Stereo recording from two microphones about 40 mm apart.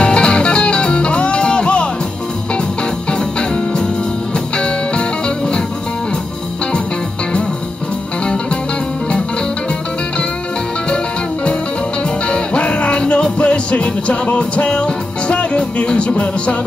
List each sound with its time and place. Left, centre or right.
0.0 s music: left
3.1 s music: left
12.3 s music: left